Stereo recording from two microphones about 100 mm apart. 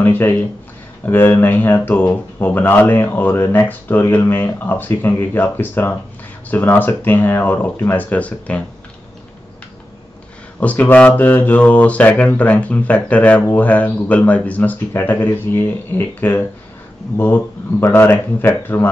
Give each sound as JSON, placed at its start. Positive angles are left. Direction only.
{"t": 0.0, "sound": "speech", "side_deg": 20}
{"t": 10.6, "sound": "speech", "side_deg": 15}